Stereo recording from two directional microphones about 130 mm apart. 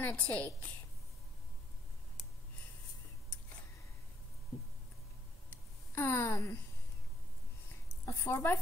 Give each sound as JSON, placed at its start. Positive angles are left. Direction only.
{"t": 0.0, "sound": "a woman's voice", "side_deg": 10}
{"t": 5.5, "sound": "a sound", "side_deg": 20}
{"t": 8.0, "sound": "a woman's voice", "side_deg": 20}